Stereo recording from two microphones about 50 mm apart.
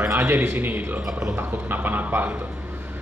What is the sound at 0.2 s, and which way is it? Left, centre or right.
A man's voice, right.